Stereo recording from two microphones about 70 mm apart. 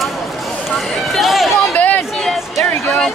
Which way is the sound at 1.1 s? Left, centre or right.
Centre.